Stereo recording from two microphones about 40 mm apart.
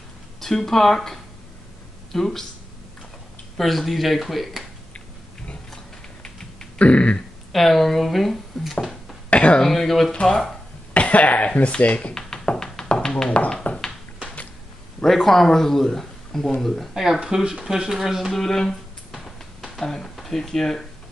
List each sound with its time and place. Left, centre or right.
0.4 s speech: centre
3.5 s speech: centre
6.2 s typing: centre
6.8 s throat clearing: left
7.5 s speech: centre
9.3 s a sound: left
9.6 s speech: centre
10.9 s speech: left
12.1 s tap: centre
13.7 s a sound: left
15.0 s speech: centre
16.9 s speech: centre
18.3 s speech: centre